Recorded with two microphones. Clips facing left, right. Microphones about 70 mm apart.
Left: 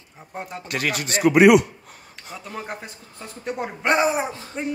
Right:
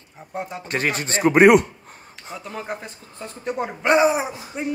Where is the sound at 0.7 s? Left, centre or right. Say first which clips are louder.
Right 1 dB; right.